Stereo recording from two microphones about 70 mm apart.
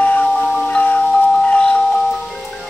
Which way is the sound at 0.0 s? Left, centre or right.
Left.